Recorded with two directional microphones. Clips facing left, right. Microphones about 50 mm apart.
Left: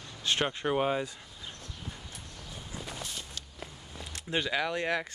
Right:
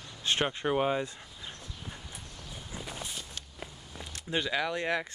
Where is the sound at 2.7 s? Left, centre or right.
Centre.